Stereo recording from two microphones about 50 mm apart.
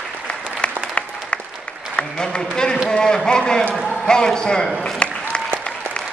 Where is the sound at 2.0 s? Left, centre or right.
Centre.